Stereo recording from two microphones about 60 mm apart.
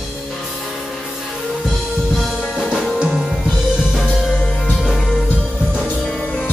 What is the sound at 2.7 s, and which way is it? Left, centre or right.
Music, centre.